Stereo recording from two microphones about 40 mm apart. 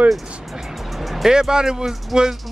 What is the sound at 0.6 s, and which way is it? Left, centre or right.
Music, centre.